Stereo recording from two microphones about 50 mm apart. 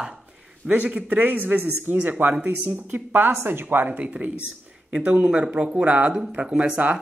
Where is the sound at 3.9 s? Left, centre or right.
Right.